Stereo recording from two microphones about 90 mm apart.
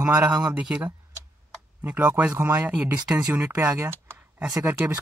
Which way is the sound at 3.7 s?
25° right (ahead or behind).